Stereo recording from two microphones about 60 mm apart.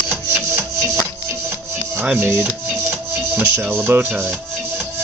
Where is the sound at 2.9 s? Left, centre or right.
Right.